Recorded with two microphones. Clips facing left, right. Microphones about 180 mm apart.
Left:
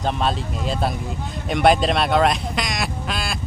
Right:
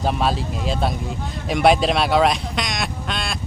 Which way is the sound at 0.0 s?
5° right (ahead or behind).